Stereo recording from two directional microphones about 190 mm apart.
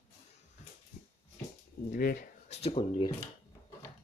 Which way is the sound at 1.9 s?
50° left (ahead or behind).